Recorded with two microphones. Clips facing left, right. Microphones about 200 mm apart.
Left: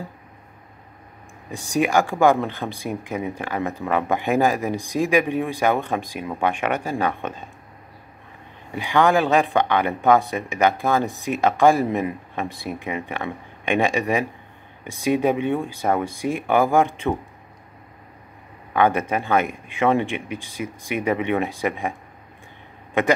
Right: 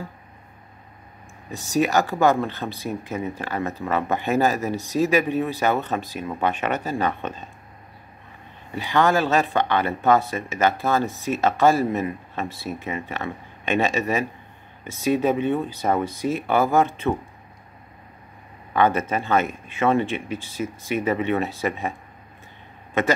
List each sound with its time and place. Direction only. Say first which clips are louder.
1.5 s speech: left 1 dB; 15° left (ahead or behind)
8.7 s speech: left 2 dB; 15° left (ahead or behind)
18.7 s speech: left 1 dB; 10° left (ahead or behind)